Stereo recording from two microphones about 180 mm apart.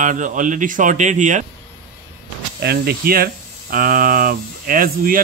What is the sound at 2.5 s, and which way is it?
Speech, 60° right (ahead or behind).